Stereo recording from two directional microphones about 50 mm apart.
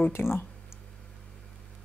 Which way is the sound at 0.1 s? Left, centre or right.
Left.